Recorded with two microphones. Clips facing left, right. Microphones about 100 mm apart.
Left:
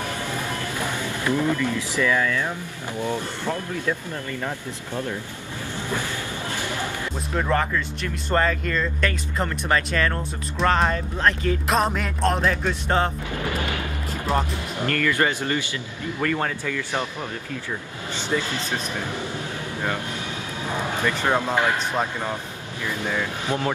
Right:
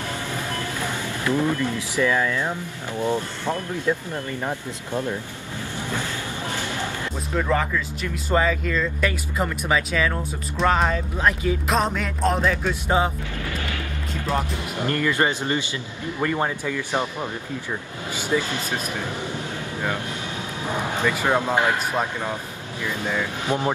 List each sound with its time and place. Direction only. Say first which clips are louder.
0.5 s vehicle: even; 15° left (ahead or behind)
1.3 s speech: even; 20° right (ahead or behind)
7.3 s speech: even; 5° left (ahead or behind)
14.8 s speech: even; 20° right (ahead or behind)
20.7 s speech: right 1 dB; 10° right (ahead or behind)
23.5 s speech: right 2 dB; 15° right (ahead or behind)